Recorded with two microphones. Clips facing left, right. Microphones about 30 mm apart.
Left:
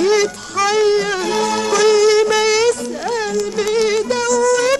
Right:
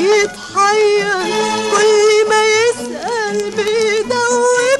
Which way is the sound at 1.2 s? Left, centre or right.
Centre.